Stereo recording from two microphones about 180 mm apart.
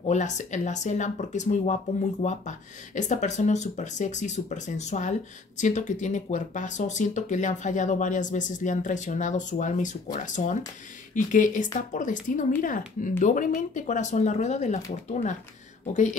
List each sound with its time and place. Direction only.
0.1 s speech: 40° left (ahead or behind)